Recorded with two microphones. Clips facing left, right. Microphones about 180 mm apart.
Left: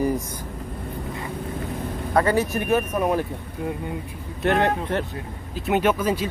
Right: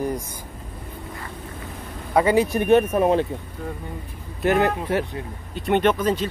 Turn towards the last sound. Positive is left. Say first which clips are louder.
# right 1 dB
turn(degrees=10)  # may be behind; listen again after turning